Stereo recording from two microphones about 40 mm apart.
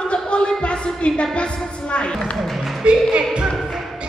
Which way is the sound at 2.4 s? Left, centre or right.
Centre.